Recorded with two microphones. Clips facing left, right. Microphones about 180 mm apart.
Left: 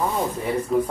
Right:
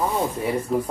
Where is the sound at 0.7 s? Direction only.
Centre (ahead or behind).